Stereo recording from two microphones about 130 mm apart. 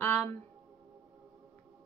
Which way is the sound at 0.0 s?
10° left (ahead or behind).